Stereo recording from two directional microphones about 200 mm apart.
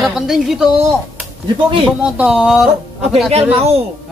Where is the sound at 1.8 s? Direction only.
5° right (ahead or behind).